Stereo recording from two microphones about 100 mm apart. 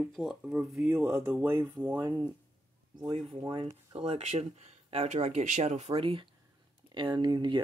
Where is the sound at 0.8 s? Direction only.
20° right (ahead or behind).